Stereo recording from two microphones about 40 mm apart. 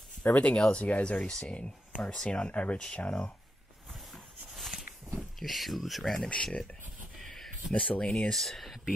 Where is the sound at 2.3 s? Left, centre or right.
Left.